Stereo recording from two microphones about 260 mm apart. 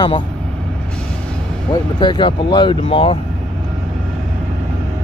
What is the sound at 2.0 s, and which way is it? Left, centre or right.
Speech, centre.